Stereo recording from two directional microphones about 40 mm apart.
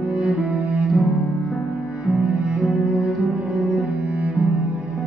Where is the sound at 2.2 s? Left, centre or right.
Right.